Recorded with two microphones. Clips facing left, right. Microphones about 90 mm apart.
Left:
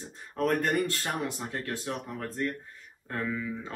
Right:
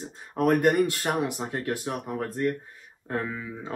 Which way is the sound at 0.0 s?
15° right (ahead or behind).